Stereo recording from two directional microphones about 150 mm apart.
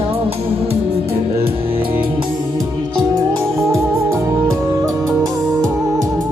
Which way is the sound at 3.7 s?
20° right (ahead or behind).